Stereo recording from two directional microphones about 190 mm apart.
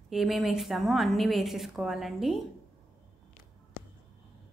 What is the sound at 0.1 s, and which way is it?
A woman's voice, centre (ahead or behind).